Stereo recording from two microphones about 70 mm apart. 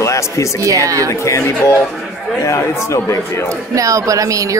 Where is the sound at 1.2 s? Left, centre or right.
Left.